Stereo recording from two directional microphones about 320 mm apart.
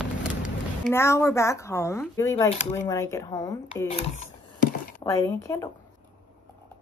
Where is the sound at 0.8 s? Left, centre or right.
Centre.